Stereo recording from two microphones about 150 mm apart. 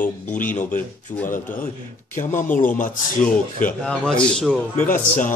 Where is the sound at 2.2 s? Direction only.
60° left (ahead or behind).